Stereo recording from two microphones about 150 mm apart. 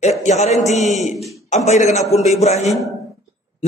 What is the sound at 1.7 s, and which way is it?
A man's voice, 50° left (ahead or behind).